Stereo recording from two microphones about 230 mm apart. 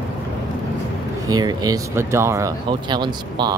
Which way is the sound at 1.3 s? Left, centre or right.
Centre.